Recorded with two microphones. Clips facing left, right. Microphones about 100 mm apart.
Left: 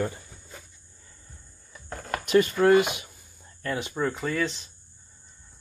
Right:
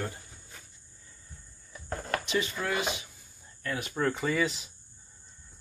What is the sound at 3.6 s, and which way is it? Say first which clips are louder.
Speech: left 4 dB; 30° left (ahead or behind).